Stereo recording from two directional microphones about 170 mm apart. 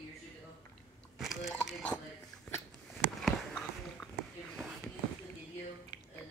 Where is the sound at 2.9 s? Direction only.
Centre (ahead or behind).